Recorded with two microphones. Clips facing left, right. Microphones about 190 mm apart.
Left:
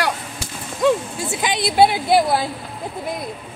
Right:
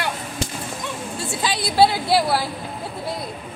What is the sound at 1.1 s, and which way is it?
A woman's voice, 20° left (ahead or behind).